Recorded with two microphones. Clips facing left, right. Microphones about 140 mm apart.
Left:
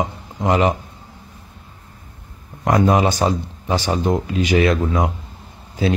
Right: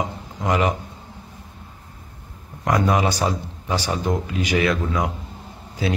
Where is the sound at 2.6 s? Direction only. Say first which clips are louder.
Left 4 dB; 25° left (ahead or behind).